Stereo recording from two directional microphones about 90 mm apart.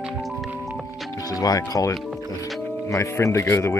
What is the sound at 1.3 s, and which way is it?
Speech, 40° left (ahead or behind).